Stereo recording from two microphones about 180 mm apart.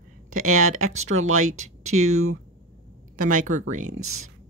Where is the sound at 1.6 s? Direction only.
40° right (ahead or behind).